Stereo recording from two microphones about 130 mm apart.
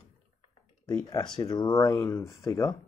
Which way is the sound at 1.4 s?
30° left (ahead or behind).